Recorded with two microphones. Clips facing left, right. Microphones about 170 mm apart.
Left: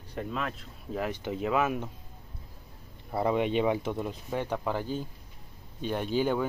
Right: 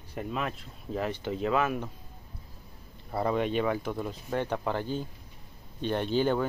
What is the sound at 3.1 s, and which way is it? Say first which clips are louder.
Speech: left 1 dB; 15° left (ahead or behind).